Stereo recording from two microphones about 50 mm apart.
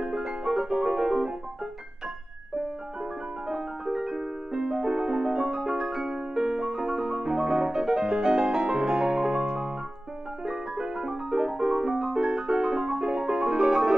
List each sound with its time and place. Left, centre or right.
0.0 s music: centre
3.0 s piano: centre